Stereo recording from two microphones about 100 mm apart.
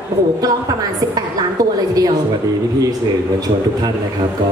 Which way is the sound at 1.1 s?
40° right (ahead or behind).